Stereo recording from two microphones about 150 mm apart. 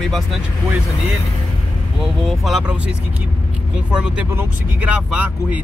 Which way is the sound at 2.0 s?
Centre (ahead or behind).